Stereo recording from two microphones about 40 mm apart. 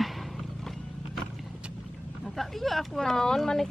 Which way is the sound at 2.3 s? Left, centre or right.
Centre.